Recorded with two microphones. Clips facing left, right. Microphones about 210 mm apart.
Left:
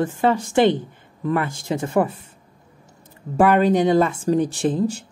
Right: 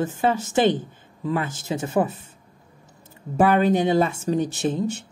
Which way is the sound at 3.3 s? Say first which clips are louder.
Left 2 dB; 20° right (ahead or behind).